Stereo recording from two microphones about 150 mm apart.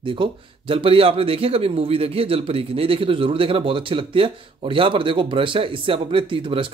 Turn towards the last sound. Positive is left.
turn(degrees=-35)  # may be behind; listen again after turning